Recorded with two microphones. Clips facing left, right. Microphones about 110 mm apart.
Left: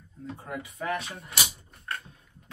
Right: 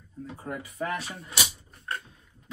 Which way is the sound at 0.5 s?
40° right (ahead or behind).